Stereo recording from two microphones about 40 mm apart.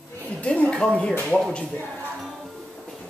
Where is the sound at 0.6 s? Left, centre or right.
Left.